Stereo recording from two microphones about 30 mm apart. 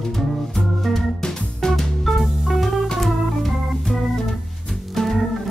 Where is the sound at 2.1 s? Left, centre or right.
Centre.